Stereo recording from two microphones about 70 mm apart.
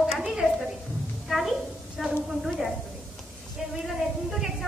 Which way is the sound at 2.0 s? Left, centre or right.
Centre.